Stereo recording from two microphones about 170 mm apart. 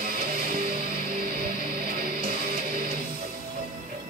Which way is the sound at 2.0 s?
60° right (ahead or behind).